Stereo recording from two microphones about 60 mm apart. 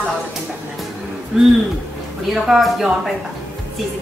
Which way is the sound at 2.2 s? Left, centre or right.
Centre.